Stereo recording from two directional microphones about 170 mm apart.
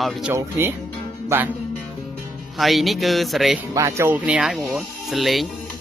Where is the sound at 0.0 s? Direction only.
Centre (ahead or behind).